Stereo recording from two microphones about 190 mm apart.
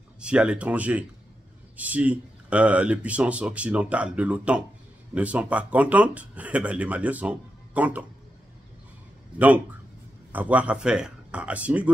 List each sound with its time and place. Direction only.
0.2 s speech: 5° right (ahead or behind)
10.3 s speech: 10° right (ahead or behind)